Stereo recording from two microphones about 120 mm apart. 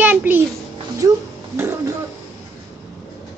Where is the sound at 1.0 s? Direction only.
30° right (ahead or behind).